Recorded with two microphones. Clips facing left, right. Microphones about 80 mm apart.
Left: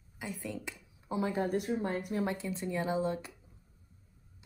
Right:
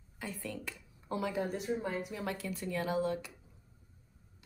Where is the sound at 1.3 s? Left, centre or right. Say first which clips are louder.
Left 3 dB; left.